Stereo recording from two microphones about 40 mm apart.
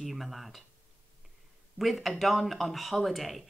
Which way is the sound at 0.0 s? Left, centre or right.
Centre.